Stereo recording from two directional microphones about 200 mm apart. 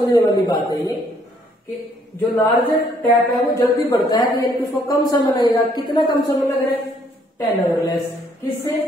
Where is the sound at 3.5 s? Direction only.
20° left (ahead or behind).